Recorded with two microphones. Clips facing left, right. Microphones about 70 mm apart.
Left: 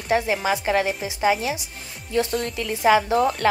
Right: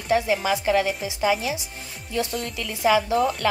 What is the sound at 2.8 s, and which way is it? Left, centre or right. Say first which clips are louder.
Speech: left 2 dB; left.